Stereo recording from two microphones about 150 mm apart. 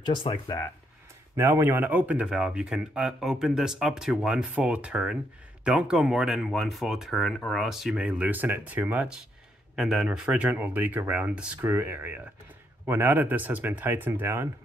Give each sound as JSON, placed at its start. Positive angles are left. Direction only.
{"t": 0.1, "sound": "speech", "side_deg": 30}
{"t": 1.3, "sound": "speech", "side_deg": -20}